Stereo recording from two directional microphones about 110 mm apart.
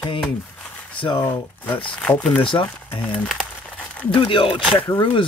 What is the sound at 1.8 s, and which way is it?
Speech, 10° left (ahead or behind).